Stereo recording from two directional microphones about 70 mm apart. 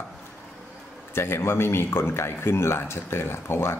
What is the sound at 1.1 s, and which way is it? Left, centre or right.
Speech, left.